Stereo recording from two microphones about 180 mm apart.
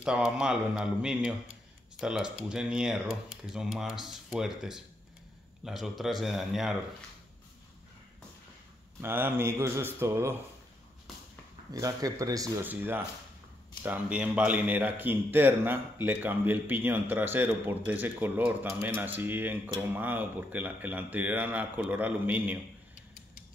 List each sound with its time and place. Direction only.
0.0 s speech: 5° right (ahead or behind)
9.0 s speech: 10° right (ahead or behind)
11.7 s speech: 20° right (ahead or behind)